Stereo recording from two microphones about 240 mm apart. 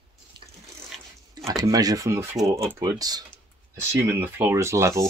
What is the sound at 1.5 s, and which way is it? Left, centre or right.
Speech, centre.